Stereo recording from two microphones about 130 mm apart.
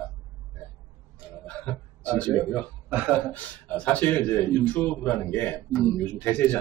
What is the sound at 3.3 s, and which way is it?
A man's voice, 10° left (ahead or behind).